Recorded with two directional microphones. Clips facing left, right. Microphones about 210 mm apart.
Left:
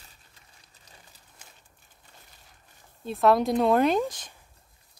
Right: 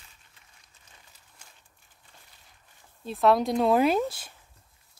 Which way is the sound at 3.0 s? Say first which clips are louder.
Left 1 dB; centre (ahead or behind).